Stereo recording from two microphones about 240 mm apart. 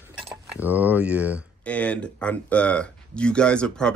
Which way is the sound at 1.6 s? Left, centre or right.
Centre.